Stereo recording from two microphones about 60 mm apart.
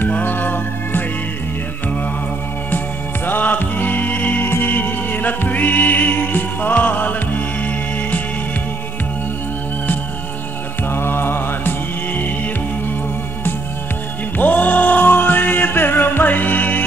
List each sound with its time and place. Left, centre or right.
0.0 s music: left
3.3 s music: left
10.9 s music: left
14.4 s chant: left